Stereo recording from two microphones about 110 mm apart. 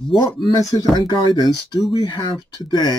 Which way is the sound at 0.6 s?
30° left (ahead or behind).